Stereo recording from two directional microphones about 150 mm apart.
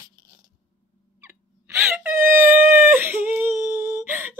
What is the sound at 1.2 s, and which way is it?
Wail, 15° right (ahead or behind).